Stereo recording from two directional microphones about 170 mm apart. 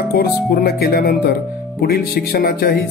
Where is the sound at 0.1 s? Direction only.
65° left (ahead or behind).